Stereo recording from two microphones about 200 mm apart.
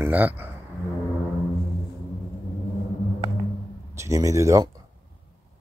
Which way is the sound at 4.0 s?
15° right (ahead or behind).